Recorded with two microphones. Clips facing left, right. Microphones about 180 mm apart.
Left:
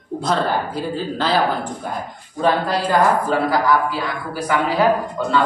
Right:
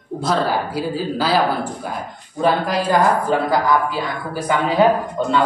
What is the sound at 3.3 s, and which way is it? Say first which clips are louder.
A man's voice: even; 20° right (ahead or behind).